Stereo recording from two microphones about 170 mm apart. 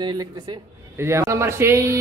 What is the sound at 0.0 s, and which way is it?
Speech, 25° right (ahead or behind).